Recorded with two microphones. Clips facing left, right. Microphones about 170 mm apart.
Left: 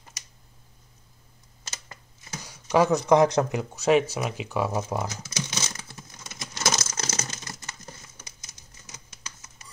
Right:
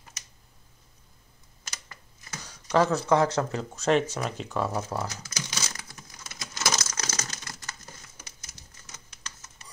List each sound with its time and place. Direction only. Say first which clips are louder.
1.6 s computer keyboard: left 2 dB; 25° left (ahead or behind)
2.3 s speech: left 2 dB; 10° left (ahead or behind)
4.1 s crumpling: left 2 dB; 10° left (ahead or behind)
6.6 s crushing: left 2 dB; 25° left (ahead or behind)
8.4 s typewriter: even; 15° left (ahead or behind)